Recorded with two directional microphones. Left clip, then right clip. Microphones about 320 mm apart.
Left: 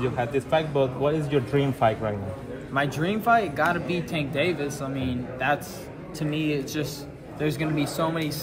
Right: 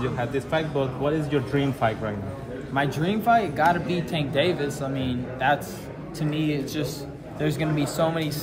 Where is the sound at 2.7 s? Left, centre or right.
Centre.